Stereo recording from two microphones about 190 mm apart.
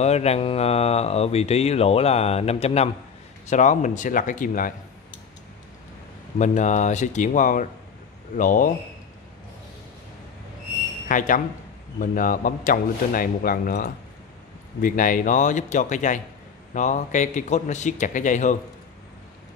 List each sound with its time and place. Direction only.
0.0 s speech: 35° left (ahead or behind)
6.3 s speech: 40° left (ahead or behind)
11.1 s speech: 45° left (ahead or behind)